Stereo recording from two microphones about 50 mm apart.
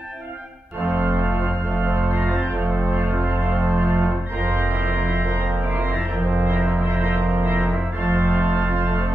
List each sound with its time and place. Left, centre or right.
0.8 s music: right
4.5 s organ: right